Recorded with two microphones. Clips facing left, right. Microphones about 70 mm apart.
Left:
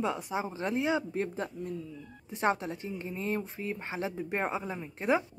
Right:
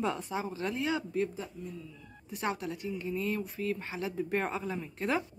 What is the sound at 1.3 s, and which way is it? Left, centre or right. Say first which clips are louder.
Speech: left 5 dB; left.